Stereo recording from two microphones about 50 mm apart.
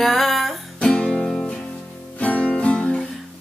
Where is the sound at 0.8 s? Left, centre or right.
Centre.